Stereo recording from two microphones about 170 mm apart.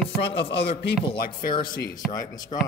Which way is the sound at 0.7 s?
30° left (ahead or behind).